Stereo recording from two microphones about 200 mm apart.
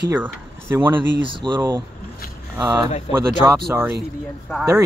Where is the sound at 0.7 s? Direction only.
15° right (ahead or behind).